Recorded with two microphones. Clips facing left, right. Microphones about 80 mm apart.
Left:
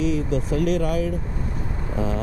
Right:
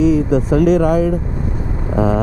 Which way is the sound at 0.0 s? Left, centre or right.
Right.